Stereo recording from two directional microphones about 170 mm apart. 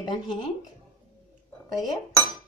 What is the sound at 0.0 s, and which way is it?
Speech, 25° left (ahead or behind).